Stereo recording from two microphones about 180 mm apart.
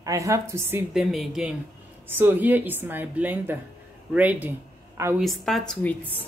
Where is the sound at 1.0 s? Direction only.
Centre (ahead or behind).